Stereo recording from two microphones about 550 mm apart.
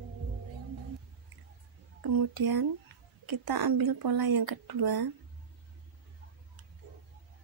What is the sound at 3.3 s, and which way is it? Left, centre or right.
Speech, right.